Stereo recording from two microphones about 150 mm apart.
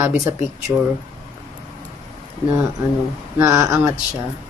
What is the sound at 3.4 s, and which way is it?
Speech, 20° right (ahead or behind).